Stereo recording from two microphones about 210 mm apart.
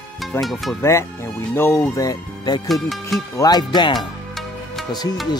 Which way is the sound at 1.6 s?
10° left (ahead or behind).